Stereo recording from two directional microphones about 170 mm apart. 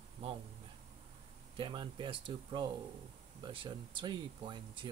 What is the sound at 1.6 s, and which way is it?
Speech, 30° right (ahead or behind).